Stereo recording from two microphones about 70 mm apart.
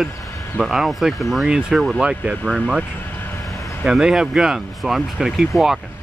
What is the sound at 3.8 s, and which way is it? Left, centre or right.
Speech, centre.